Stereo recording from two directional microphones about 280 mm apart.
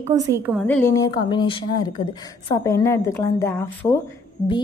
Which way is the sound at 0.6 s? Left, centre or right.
Centre.